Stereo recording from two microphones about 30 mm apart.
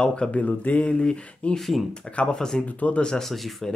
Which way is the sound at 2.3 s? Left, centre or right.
Centre.